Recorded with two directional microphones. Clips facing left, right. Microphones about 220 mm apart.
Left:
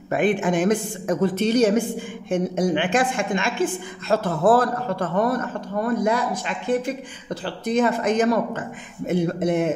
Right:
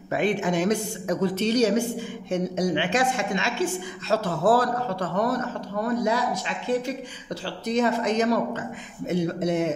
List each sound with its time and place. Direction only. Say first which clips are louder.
0.1 s speech: left 3 dB; 50° left (ahead or behind)